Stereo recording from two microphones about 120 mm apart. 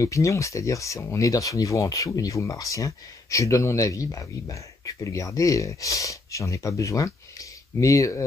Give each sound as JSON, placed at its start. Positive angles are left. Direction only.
{"t": 0.0, "sound": "speech", "side_deg": 25}